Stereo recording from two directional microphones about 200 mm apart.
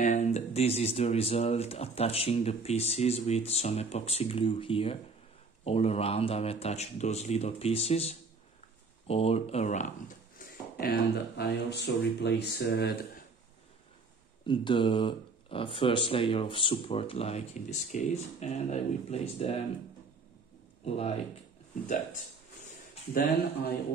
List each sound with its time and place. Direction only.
0.0 s speech: 35° left (ahead or behind); by 13.2 s 55° left (ahead or behind)
14.4 s speech: 25° left (ahead or behind)
20.8 s speech: 30° left (ahead or behind)